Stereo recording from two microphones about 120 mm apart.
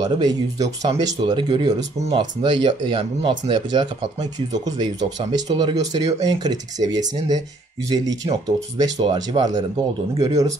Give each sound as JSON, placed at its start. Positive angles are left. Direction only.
{"t": 0.0, "sound": "speech", "side_deg": -35}